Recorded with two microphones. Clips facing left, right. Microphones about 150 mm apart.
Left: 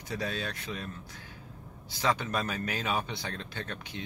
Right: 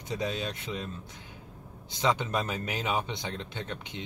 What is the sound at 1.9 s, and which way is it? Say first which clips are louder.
Speech: right 2 dB; 20° right (ahead or behind).